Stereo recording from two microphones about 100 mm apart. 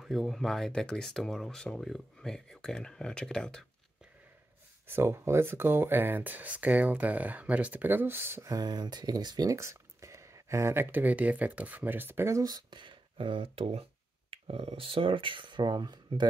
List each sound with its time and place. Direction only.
0.0 s speech: centre (ahead or behind)
4.8 s speech: 25° right (ahead or behind)
8.5 s speech: 45° right (ahead or behind)
9.6 s speech: 30° right (ahead or behind)
12.4 s speech: 45° right (ahead or behind)